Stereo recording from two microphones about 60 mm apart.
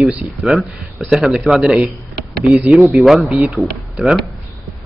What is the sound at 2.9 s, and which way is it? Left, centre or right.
Speech, centre.